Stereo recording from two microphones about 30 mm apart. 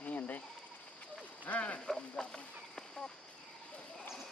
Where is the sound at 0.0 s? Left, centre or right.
Left.